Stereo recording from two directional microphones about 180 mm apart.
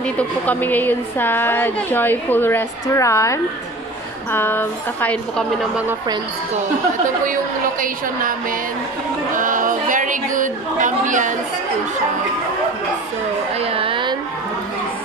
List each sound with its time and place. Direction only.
0.2 s a woman's voice: 10° left (ahead or behind)
7.8 s a woman's voice: 50° right (ahead or behind)
13.6 s a sound: 30° right (ahead or behind)